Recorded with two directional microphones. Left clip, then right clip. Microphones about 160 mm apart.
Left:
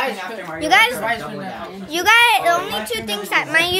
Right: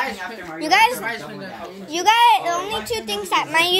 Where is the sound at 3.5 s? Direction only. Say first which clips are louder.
Even; 10° right (ahead or behind).